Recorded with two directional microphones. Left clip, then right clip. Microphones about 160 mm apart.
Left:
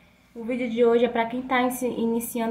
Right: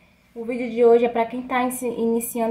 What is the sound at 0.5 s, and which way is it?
Speech, 5° left (ahead or behind).